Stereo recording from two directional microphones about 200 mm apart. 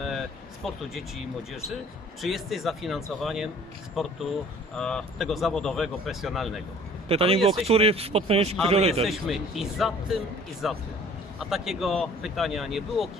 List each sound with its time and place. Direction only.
0.7 s speech: centre (ahead or behind)
7.1 s a man's voice: 30° right (ahead or behind)
9.0 s speech: centre (ahead or behind)